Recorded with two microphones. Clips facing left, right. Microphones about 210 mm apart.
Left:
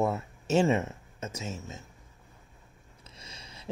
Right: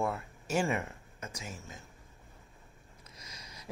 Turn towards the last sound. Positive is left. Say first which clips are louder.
# left 2 dB
turn(degrees=30)  # may be behind; listen again after turning